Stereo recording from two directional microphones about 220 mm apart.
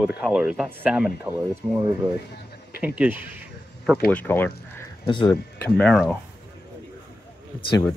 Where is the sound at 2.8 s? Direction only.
10° right (ahead or behind).